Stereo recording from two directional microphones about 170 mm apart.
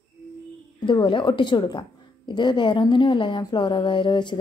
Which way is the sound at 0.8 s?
25° left (ahead or behind).